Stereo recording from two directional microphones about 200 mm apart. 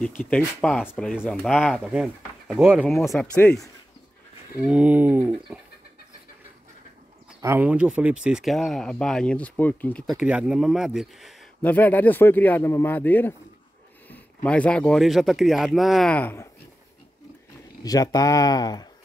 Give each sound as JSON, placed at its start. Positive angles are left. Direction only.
{"t": 0.0, "sound": "speech", "side_deg": 5}
{"t": 4.6, "sound": "bird", "side_deg": -5}
{"t": 7.4, "sound": "speech", "side_deg": -10}
{"t": 17.8, "sound": "speech", "side_deg": 20}